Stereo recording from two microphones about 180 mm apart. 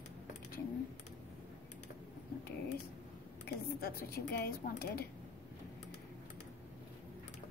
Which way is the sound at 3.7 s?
55° left (ahead or behind).